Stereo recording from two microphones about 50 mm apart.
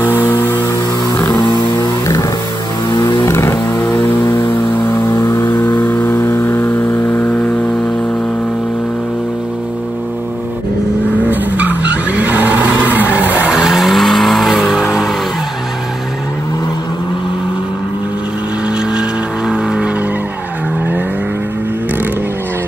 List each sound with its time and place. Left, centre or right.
0.1 s music: left
1.1 s vehicle: left
3.0 s vehicle: left
5.2 s vehicle: left
11.2 s vehicle: right
13.5 s vehicle: centre
18.9 s vehicle: centre